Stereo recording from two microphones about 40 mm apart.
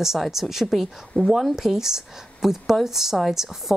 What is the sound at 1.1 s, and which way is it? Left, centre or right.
Speech, left.